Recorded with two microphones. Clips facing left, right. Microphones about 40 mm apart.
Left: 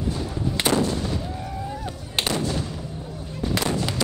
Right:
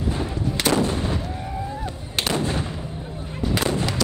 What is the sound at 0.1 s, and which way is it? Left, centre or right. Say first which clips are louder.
Artillery fire: right 2 dB; right.